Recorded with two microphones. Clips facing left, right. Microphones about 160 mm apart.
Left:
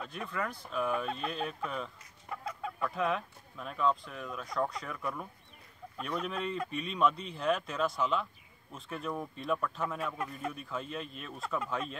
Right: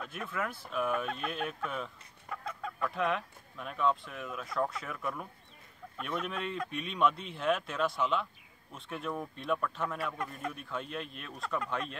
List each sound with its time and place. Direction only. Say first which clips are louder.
0.0 s speech: even; centre (ahead or behind)
2.2 s chicken: left 1 dB; 5° left (ahead or behind)
5.9 s speech: left 1 dB; centre (ahead or behind)